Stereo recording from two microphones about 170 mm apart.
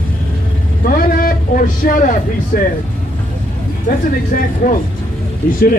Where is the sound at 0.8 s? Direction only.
55° left (ahead or behind).